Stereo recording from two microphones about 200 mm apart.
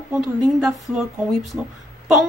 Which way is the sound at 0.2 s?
5° right (ahead or behind).